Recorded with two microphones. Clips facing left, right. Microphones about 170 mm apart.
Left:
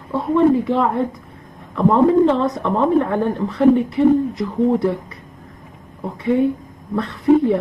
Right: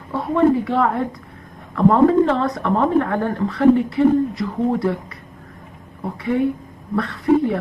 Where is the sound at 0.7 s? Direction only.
20° left (ahead or behind).